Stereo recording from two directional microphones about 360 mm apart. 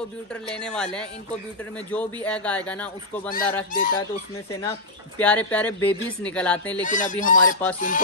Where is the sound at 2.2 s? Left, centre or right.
Centre.